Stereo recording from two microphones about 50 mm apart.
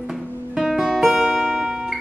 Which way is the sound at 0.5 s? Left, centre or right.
Centre.